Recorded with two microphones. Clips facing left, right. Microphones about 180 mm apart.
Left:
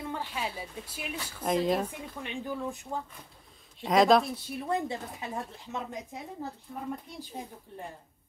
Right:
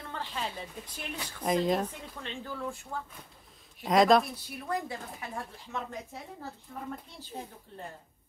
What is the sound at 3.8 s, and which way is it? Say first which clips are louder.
Speech: even; centre (ahead or behind).